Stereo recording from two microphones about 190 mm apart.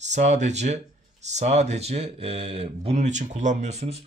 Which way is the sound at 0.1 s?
40° right (ahead or behind).